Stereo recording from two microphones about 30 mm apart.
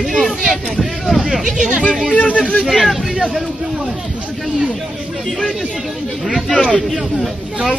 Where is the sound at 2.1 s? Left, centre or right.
Left.